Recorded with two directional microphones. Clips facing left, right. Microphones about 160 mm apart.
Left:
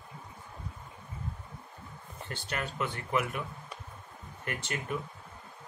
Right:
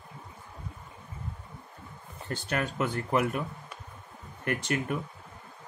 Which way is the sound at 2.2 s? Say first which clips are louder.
Right 6 dB; 45° right (ahead or behind).